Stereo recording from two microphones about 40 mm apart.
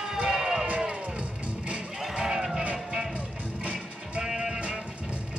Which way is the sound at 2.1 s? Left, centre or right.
Centre.